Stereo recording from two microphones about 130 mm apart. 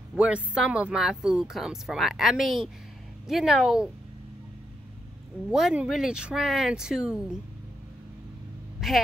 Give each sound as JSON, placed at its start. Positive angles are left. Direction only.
{"t": 0.1, "sound": "speech", "side_deg": -5}
{"t": 5.5, "sound": "speech", "side_deg": -5}
{"t": 8.8, "sound": "speech", "side_deg": 0}